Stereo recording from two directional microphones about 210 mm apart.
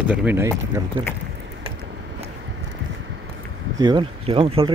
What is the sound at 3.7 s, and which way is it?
Speech, 20° right (ahead or behind).